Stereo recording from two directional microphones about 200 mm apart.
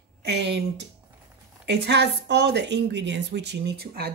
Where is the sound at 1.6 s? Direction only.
55° right (ahead or behind).